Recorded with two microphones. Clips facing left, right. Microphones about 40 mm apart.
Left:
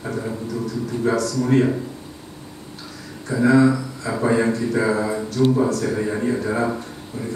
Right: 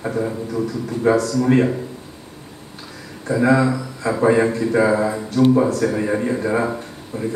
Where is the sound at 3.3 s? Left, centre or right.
Right.